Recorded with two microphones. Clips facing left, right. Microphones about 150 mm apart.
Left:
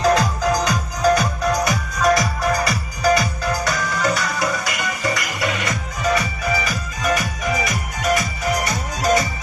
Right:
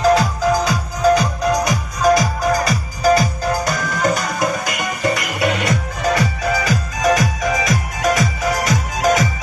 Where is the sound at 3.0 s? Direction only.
35° right (ahead or behind).